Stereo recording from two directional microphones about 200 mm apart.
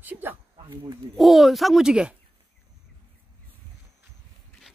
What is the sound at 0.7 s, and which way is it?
Speech, 20° right (ahead or behind).